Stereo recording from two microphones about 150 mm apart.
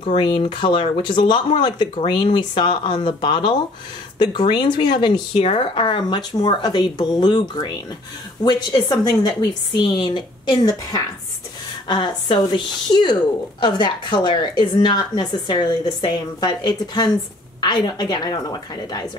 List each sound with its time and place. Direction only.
0.0 s a woman's voice: 35° left (ahead or behind)